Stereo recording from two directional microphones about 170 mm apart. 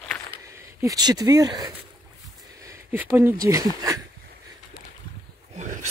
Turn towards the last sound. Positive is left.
turn(degrees=-45)  # may be behind; listen again after turning